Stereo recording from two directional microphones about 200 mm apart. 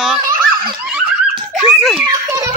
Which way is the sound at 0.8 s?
Centre (ahead or behind).